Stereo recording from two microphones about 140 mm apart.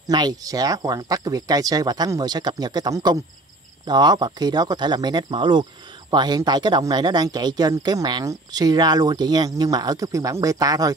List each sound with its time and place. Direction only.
0.1 s speech: 30° right (ahead or behind)